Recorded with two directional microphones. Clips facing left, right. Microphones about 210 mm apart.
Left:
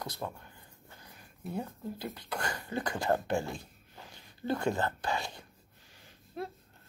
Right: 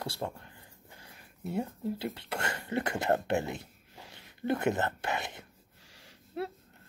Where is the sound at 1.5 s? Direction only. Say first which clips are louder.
Right 4 dB; 25° right (ahead or behind).